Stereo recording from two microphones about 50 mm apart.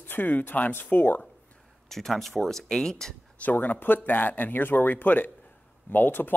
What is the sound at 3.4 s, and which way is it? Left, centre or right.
A man's voice, left.